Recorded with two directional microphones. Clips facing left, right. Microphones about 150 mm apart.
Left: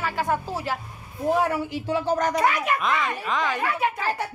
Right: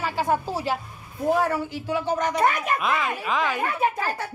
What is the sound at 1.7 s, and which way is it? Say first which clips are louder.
Speech: left 1 dB; 30° left (ahead or behind).